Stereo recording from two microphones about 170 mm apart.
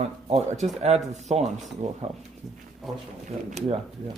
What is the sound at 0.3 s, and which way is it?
Speech, 40° right (ahead or behind).